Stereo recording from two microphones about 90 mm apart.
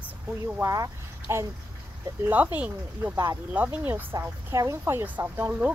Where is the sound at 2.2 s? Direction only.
20° right (ahead or behind).